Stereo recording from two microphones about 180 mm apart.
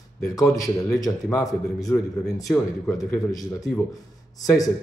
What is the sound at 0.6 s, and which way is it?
A man's voice, 20° left (ahead or behind).